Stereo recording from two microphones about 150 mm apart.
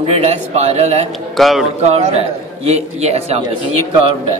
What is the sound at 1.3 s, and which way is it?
Speech, centre (ahead or behind).